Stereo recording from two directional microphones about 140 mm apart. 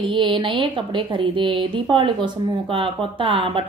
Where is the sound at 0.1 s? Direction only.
35° right (ahead or behind).